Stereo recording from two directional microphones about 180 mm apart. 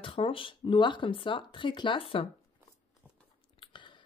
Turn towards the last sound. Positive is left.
turn(degrees=25)  # may be behind; listen again after turning